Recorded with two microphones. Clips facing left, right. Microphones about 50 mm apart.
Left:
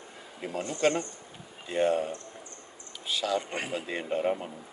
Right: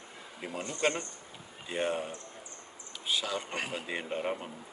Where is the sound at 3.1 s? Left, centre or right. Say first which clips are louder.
Left 4 dB; centre.